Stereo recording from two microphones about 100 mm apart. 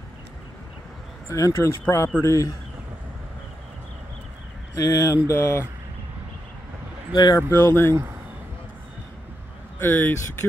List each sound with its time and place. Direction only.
1.3 s speech: 30° left (ahead or behind)
4.7 s speech: 30° left (ahead or behind)
7.2 s speech: 45° left (ahead or behind)
7.5 s speech: 25° left (ahead or behind)
9.8 s speech: 20° left (ahead or behind)